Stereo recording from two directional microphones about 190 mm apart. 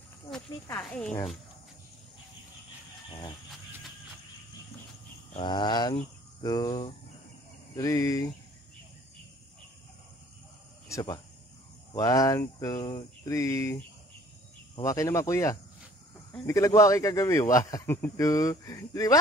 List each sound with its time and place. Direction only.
0.7 s speech: 5° left (ahead or behind)
5.4 s cricket: 25° left (ahead or behind)
7.7 s a man's voice: 20° left (ahead or behind)
10.9 s a man's voice: 20° left (ahead or behind)